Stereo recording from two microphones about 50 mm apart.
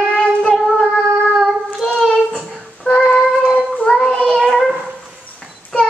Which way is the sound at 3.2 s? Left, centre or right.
Centre.